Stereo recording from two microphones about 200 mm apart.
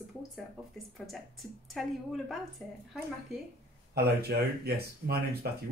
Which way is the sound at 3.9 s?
50° right (ahead or behind).